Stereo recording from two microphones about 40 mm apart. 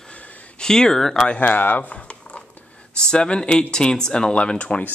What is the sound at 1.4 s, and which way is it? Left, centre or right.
Speech, left.